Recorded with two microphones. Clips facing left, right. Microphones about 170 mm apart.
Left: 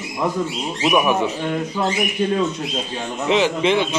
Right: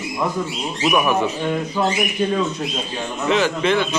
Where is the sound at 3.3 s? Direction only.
20° left (ahead or behind).